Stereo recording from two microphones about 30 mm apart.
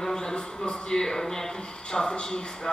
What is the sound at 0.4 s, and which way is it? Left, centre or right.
Speech, left.